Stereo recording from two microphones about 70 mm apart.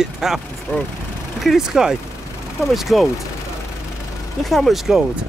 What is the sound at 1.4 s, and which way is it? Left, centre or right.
Speech, centre.